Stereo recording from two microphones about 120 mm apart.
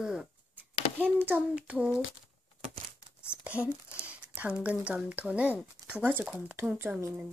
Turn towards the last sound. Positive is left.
turn(degrees=-25)  # may be behind; listen again after turning